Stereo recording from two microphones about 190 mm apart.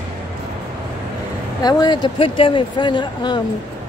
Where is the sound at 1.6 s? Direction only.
20° left (ahead or behind).